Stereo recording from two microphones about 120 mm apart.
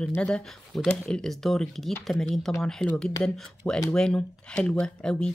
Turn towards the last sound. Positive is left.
turn(degrees=5)  # may be behind; listen again after turning